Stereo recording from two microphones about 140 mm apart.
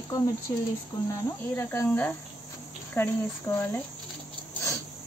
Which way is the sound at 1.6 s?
20° left (ahead or behind).